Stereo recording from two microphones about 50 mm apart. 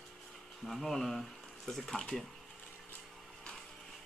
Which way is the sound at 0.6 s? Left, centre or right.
Centre.